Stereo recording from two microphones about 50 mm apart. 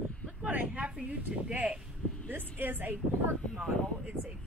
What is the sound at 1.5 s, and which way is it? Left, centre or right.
Speech, right.